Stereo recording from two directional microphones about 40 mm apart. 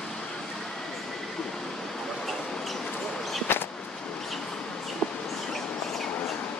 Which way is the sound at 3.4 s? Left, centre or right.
Left.